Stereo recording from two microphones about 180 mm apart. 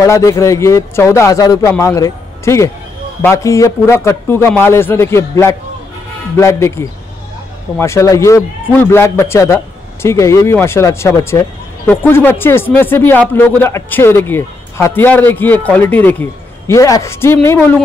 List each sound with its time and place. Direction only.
0.0 s speech: 20° left (ahead or behind)